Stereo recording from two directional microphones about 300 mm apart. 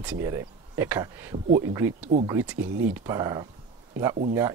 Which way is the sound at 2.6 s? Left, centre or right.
Right.